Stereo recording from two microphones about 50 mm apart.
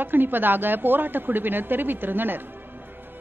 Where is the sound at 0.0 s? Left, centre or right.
Right.